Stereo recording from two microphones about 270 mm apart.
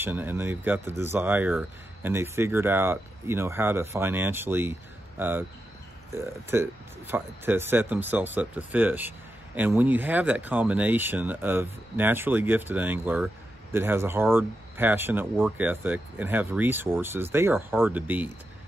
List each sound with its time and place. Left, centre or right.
0.0 s speech: centre